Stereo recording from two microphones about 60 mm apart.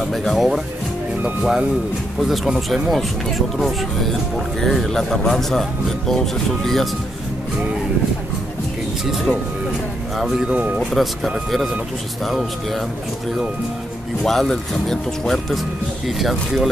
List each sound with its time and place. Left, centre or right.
0.1 s speech: centre
9.0 s speech: centre
10.5 s speech: right
10.9 s speech: centre
14.2 s speech: centre